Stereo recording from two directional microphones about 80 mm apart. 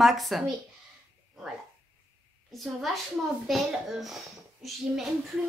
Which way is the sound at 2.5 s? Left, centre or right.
Centre.